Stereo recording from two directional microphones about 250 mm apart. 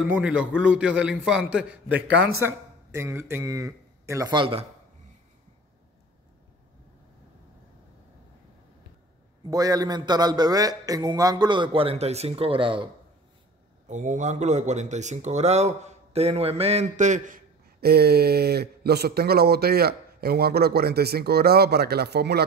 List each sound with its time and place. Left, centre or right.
0.0 s a man's voice: centre; by 4.6 s right
9.5 s a man's voice: centre
13.8 s a man's voice: right